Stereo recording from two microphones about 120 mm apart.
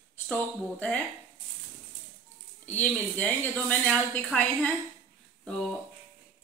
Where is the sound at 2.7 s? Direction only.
15° left (ahead or behind).